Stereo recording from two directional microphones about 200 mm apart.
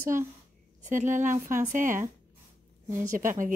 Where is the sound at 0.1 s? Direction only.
40° right (ahead or behind).